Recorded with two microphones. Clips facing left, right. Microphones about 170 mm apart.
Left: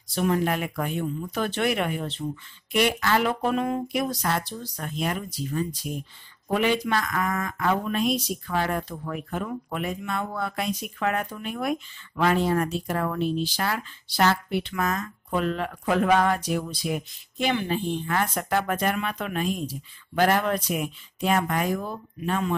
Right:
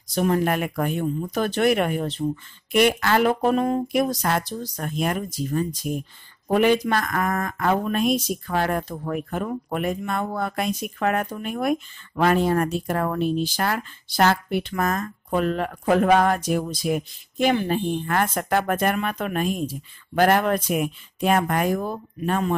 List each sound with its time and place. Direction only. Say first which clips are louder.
0.1 s speech: right 3 dB; 45° right (ahead or behind)